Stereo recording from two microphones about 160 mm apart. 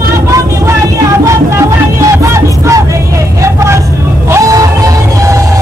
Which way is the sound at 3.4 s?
20° right (ahead or behind).